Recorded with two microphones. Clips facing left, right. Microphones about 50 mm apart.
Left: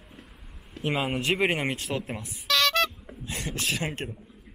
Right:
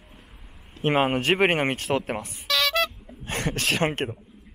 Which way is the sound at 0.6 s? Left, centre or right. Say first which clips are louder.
Right 6 dB; right.